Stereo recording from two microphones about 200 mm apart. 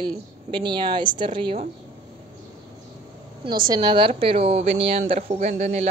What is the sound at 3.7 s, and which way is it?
Speech, 20° right (ahead or behind).